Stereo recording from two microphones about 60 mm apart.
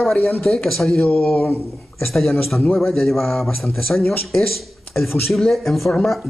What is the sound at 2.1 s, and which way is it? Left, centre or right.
A man's voice, centre.